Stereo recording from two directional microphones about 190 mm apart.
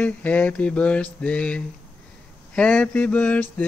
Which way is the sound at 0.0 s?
10° left (ahead or behind).